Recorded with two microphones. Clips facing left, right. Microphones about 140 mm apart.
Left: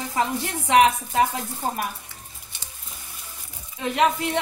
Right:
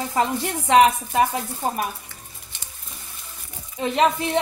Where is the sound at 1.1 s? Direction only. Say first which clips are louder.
Right 1 dB; 20° right (ahead or behind).